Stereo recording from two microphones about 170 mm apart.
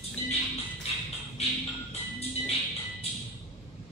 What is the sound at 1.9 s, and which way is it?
Music, 40° left (ahead or behind).